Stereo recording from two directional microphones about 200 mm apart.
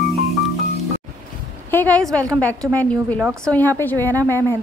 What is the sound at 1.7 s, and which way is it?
A woman's voice, 10° left (ahead or behind).